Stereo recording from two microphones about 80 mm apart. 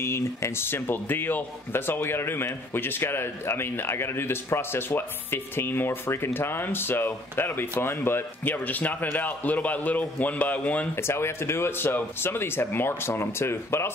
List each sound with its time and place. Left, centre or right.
0.0 s speech: left; by 10.9 s centre
11.0 s speech: left